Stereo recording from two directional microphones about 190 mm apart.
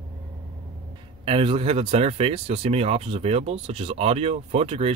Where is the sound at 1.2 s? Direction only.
30° right (ahead or behind).